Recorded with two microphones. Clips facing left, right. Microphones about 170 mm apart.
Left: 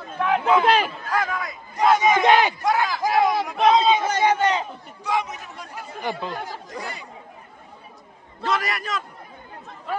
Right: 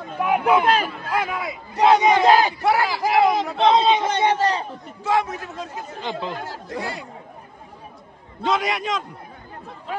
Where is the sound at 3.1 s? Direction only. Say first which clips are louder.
Right 3 dB; 20° right (ahead or behind).